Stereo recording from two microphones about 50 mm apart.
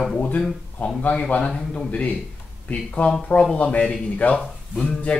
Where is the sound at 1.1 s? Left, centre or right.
Left.